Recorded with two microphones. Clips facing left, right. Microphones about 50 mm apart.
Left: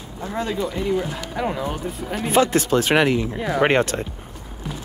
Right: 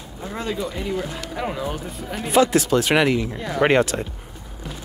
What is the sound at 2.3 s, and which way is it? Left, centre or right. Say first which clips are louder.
Speech: right 1 dB; left.